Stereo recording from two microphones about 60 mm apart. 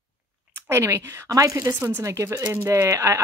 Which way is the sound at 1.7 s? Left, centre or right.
Right.